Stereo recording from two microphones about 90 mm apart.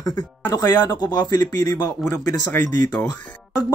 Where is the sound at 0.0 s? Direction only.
45° left (ahead or behind).